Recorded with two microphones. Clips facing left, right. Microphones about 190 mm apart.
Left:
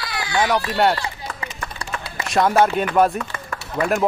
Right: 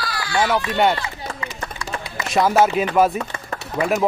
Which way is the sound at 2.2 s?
Centre (ahead or behind).